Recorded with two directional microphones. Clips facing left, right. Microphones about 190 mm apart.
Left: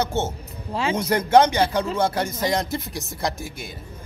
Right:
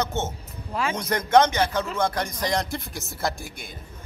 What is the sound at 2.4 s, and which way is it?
Speech, 5° left (ahead or behind).